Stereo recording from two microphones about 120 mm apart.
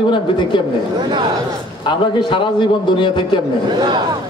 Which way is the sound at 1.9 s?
40° left (ahead or behind).